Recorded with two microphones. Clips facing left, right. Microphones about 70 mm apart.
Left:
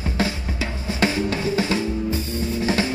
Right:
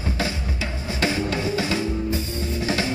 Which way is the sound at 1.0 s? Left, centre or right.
Left.